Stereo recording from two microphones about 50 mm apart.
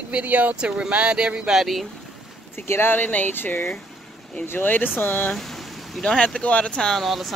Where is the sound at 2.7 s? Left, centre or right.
Left.